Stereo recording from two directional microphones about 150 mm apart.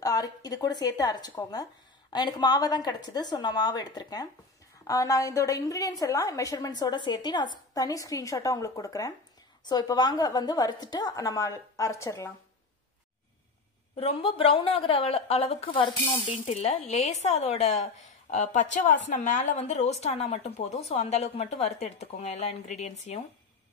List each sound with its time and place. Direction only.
0.0 s a woman's voice: 25° left (ahead or behind)
13.9 s a woman's voice: 40° left (ahead or behind)